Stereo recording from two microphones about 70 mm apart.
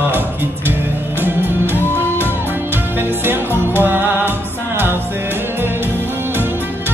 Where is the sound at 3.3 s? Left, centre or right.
Right.